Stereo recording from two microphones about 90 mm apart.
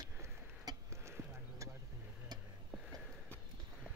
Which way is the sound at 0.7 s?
45° right (ahead or behind).